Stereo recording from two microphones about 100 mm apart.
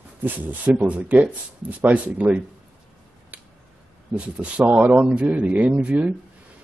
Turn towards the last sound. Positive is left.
turn(degrees=-15)  # may be behind; listen again after turning